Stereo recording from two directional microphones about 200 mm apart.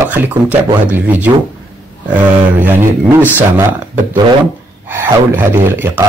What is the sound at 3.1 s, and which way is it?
Speech, 10° right (ahead or behind).